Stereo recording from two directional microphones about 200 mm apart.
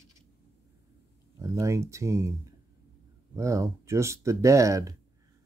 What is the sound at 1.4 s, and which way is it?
Speech, 15° right (ahead or behind).